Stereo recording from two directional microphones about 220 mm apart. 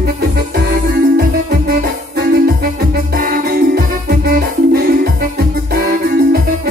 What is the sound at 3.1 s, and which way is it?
Music, 40° right (ahead or behind).